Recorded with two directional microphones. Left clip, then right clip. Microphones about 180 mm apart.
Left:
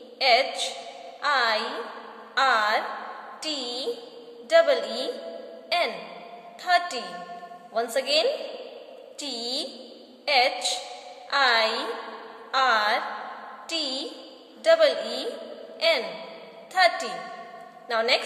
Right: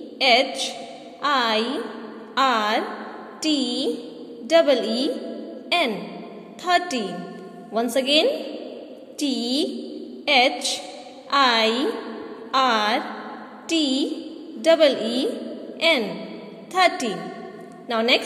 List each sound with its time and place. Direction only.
0.2 s a woman's voice: 20° right (ahead or behind)
17.8 s a woman's voice: 20° right (ahead or behind)